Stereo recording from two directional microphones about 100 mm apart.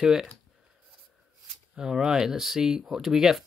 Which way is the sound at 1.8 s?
5° right (ahead or behind).